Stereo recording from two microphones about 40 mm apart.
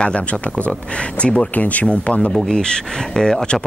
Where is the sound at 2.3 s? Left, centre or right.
Centre.